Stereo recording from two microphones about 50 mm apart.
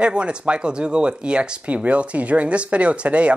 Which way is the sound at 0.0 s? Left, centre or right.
Right.